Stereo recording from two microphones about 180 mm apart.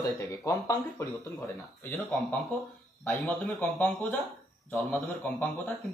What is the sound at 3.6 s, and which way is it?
A man's voice, 10° left (ahead or behind).